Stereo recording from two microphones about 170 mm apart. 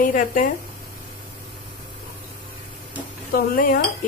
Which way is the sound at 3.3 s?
55° left (ahead or behind).